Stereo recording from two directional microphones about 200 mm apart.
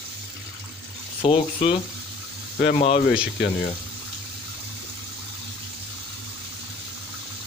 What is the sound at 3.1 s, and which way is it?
Speech, 5° right (ahead or behind).